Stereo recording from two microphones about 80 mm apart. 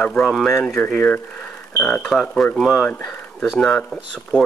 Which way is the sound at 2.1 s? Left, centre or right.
Centre.